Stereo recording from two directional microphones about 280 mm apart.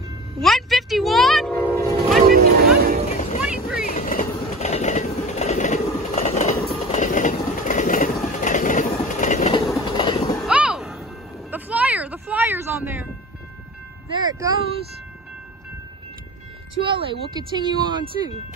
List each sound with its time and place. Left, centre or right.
0.4 s vehicle: centre
2.1 s a sound: right
3.1 s vehicle: left
3.4 s boat: centre
3.8 s train: left
10.4 s a sound: centre
11.5 s music: centre
14.1 s a sound: centre
16.8 s speech: centre